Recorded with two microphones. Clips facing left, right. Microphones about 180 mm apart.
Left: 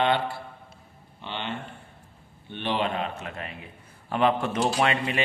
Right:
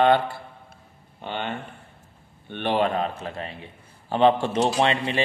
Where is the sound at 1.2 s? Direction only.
50° right (ahead or behind).